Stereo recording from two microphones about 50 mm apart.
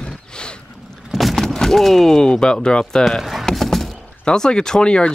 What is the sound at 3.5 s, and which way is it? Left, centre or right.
Horse, centre.